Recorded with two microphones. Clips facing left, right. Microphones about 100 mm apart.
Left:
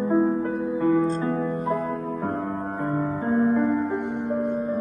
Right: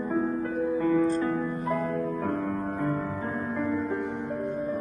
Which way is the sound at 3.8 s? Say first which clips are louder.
Left 4 dB; 70° left (ahead or behind).